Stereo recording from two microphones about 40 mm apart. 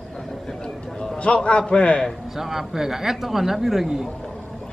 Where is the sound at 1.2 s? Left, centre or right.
Left.